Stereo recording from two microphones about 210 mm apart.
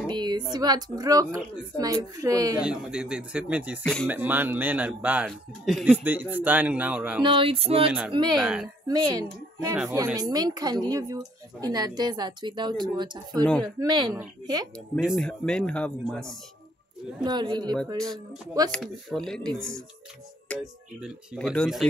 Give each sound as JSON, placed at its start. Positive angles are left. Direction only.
{"t": 0.1, "sound": "a sound", "side_deg": -20}
{"t": 0.5, "sound": "speech", "side_deg": -20}
{"t": 2.6, "sound": "speech", "side_deg": -5}
{"t": 3.8, "sound": "speech", "side_deg": 5}
{"t": 4.1, "sound": "speech", "side_deg": -10}
{"t": 7.2, "sound": "speech", "side_deg": -25}
{"t": 8.4, "sound": "speech", "side_deg": -5}
{"t": 8.8, "sound": "a child's voice", "side_deg": -20}
{"t": 15.0, "sound": "speech", "side_deg": 0}
{"t": 17.2, "sound": "speech", "side_deg": -20}
{"t": 17.9, "sound": "speech", "side_deg": 0}
{"t": 20.5, "sound": "speech", "side_deg": 5}